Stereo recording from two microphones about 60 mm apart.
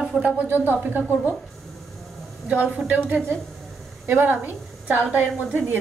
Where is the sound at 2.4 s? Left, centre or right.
Right.